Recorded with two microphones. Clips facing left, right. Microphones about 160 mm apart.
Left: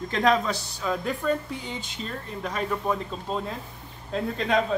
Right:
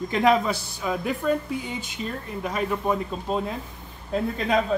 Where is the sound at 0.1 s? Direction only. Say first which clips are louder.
Right 2 dB; 10° right (ahead or behind).